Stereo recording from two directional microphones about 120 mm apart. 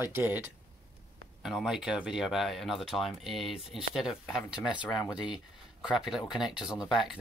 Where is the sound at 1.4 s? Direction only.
5° right (ahead or behind).